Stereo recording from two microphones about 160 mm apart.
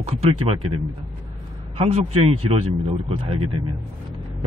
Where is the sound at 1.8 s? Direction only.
40° right (ahead or behind).